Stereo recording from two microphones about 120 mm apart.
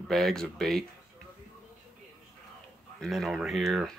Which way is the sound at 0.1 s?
5° left (ahead or behind).